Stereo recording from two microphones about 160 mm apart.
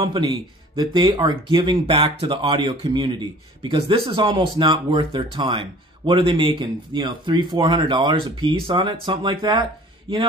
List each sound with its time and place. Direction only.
0.0 s speech: 25° right (ahead or behind)